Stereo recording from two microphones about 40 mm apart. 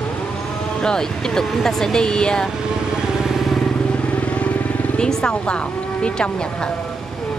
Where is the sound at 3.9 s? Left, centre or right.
Left.